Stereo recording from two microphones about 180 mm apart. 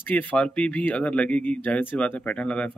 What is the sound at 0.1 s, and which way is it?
Speech, 5° left (ahead or behind).